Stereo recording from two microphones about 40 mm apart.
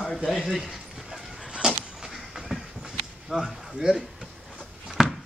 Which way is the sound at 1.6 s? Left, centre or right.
Centre.